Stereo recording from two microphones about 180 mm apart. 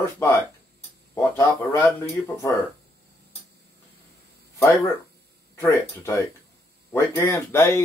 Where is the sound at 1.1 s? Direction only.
15° left (ahead or behind).